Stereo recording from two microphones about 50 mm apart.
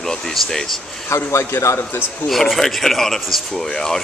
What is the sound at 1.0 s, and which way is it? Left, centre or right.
Speech, left.